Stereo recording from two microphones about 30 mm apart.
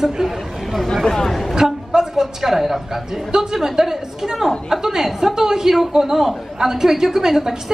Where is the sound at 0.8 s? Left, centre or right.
Centre.